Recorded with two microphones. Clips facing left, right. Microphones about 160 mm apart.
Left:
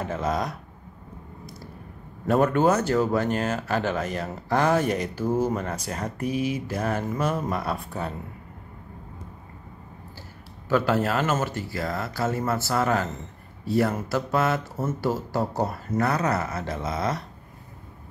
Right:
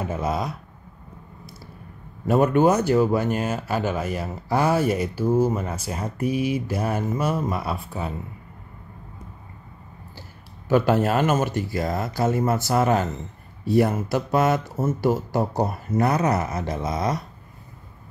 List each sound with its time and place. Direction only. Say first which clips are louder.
0.0 s speech: right 1 dB; 10° right (ahead or behind)
2.2 s speech: right 2 dB; 10° right (ahead or behind)
10.7 s speech: right 3 dB; 20° right (ahead or behind)